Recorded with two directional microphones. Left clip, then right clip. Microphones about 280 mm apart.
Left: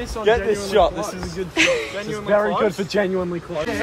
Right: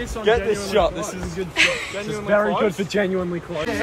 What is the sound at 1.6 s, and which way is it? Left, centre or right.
Speech, left.